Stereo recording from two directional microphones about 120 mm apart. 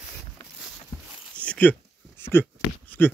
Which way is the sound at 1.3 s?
10° left (ahead or behind).